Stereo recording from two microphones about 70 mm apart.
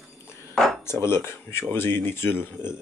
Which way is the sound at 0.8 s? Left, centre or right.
Left.